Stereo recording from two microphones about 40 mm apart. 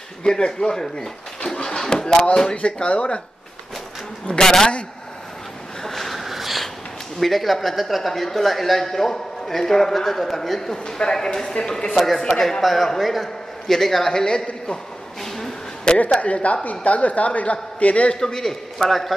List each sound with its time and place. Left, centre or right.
0.2 s a man's voice: centre
1.4 s a sound: centre
2.5 s speech: left
4.3 s a man's voice: centre
5.9 s a sound: centre
7.2 s a man's voice: centre
11.9 s a man's voice: centre; by 14.8 s left
15.3 s a sound: centre
15.9 s a man's voice: left
18.2 s a man's voice: centre